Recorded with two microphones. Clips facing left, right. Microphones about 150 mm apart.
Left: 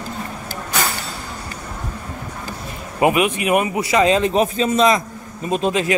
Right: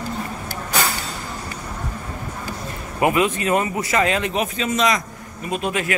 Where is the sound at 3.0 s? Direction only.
20° left (ahead or behind).